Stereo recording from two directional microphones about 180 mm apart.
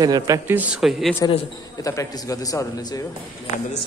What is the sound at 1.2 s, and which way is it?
A man's voice, 20° left (ahead or behind).